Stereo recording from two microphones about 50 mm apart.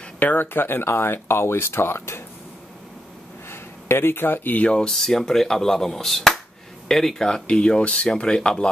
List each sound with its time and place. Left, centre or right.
0.2 s speech: left
3.4 s a sound: left
4.6 s speech: centre
4.9 s speech: centre